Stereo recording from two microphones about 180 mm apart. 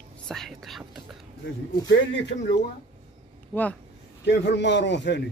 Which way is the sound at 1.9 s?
85° left.